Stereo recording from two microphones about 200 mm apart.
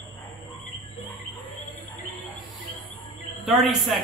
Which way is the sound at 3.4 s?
Centre (ahead or behind).